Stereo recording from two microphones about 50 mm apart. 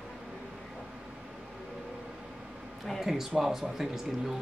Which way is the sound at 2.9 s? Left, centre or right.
Centre.